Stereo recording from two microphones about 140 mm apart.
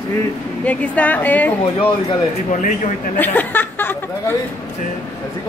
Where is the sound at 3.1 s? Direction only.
15° left (ahead or behind).